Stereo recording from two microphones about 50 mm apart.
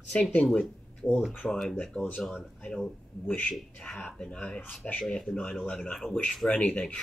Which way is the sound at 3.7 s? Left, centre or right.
Centre.